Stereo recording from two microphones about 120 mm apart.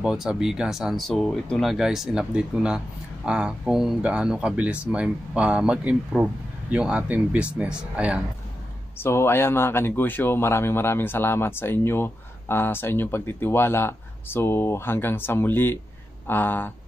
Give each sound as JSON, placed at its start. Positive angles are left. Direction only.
{"t": 0.0, "sound": "speech", "side_deg": -5}
{"t": 8.9, "sound": "speech", "side_deg": 20}